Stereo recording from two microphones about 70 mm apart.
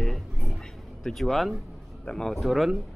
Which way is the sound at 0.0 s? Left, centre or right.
Centre.